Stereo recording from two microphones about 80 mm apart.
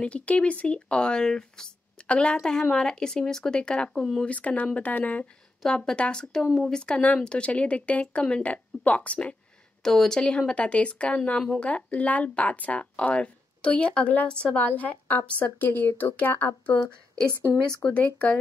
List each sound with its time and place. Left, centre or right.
0.0 s speech: centre
5.6 s speech: centre
17.8 s speech: centre